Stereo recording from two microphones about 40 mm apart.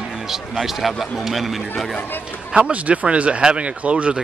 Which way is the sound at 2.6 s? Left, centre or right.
Right.